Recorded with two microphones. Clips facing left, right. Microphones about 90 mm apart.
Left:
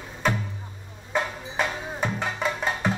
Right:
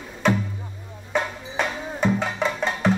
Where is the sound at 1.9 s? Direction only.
5° left (ahead or behind).